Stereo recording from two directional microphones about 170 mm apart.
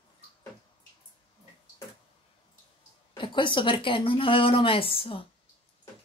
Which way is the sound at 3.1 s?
30° left (ahead or behind).